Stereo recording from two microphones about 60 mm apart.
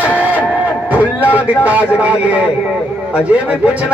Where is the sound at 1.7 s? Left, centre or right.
Right.